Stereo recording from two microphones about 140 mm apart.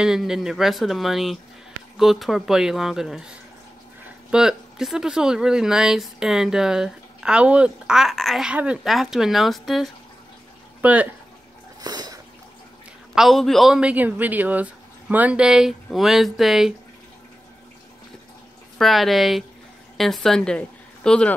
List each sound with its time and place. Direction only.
0.0 s speech: 5° right (ahead or behind)
10.8 s speech: 10° right (ahead or behind)
11.8 s a sound: 30° right (ahead or behind)
13.1 s speech: centre (ahead or behind)
18.8 s speech: centre (ahead or behind)